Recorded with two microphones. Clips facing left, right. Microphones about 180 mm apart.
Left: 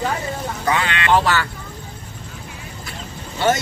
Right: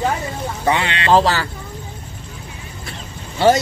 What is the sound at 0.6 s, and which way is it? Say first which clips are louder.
Speech: right 2 dB; 25° right (ahead or behind).